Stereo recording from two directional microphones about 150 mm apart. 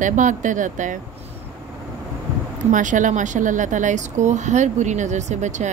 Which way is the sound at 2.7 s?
60° right (ahead or behind).